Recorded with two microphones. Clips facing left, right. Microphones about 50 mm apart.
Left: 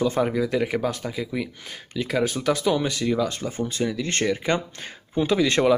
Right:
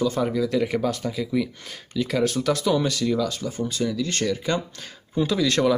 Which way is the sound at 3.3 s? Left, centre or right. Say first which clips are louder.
Even; left.